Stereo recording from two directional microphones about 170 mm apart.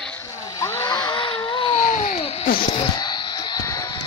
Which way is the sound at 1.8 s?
50° left (ahead or behind).